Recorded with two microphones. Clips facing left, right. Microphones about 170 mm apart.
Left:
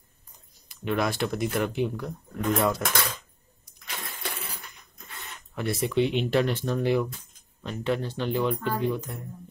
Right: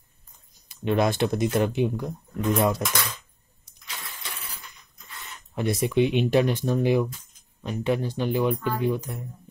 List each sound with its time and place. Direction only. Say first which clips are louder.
0.7 s speech: right 4 dB; 20° right (ahead or behind)
3.8 s a sound: left 4 dB; 55° left (ahead or behind)
5.5 s speech: right 3 dB; 20° right (ahead or behind)